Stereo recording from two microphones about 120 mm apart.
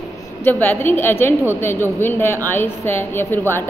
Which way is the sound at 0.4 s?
15° left (ahead or behind).